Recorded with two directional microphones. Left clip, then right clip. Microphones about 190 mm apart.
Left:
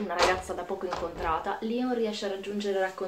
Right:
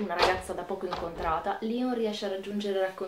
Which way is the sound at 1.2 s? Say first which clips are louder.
Right 1 dB; 15° right (ahead or behind).